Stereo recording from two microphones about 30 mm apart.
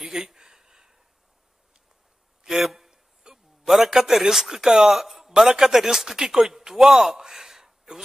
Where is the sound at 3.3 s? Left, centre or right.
Right.